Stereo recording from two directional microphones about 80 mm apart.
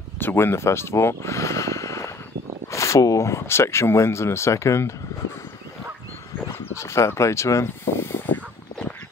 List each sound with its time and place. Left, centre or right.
0.2 s speech: left
6.6 s speech: left